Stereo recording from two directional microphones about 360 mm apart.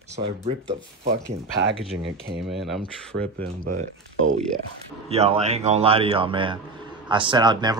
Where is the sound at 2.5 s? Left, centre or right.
Centre.